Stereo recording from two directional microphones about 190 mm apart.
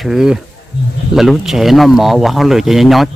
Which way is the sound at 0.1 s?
5° right (ahead or behind).